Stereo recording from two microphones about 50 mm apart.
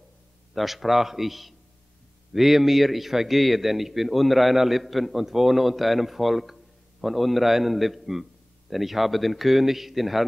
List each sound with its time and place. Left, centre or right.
0.6 s a man's voice: centre